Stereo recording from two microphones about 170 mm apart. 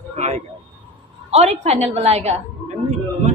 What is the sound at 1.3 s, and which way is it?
Speech, 40° right (ahead or behind).